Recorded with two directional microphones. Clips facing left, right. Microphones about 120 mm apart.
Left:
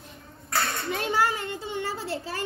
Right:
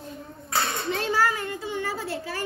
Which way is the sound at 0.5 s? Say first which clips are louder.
Right 1 dB; 20° right (ahead or behind).